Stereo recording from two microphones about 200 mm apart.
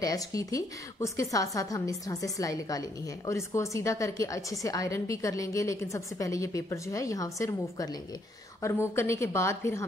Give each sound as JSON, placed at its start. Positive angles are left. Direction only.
{"t": 0.0, "sound": "a woman's voice", "side_deg": 15}